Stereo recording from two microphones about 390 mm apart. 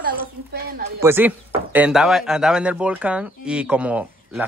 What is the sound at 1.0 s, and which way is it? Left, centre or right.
Speech, centre.